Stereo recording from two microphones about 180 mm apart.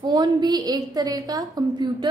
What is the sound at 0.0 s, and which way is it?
A woman's voice, 25° right (ahead or behind).